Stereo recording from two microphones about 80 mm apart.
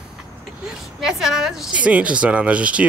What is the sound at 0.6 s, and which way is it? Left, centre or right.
A woman's voice, centre.